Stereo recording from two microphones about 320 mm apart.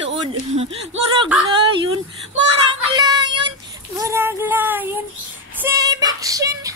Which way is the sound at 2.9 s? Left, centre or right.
Centre.